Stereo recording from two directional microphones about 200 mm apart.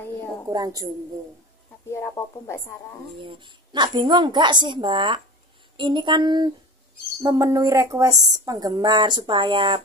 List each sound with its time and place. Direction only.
0.5 s speech: 20° right (ahead or behind)
1.9 s speech: 15° left (ahead or behind)
3.2 s speech: 25° right (ahead or behind)